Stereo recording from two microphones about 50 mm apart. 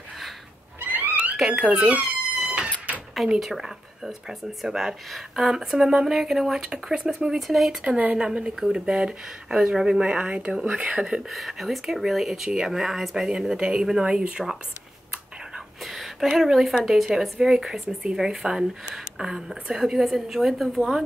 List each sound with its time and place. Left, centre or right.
0.7 s cat: right
1.4 s speech: centre
2.0 s cat: right
3.3 s speech: centre
7.4 s speech: centre
8.2 s speech: centre
11.2 s speech: centre
15.8 s a sound: centre
16.3 s speech: centre